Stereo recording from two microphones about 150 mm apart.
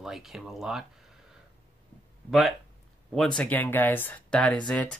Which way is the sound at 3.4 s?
10° left (ahead or behind).